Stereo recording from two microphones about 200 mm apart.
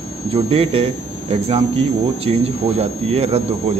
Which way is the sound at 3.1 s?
30° right (ahead or behind).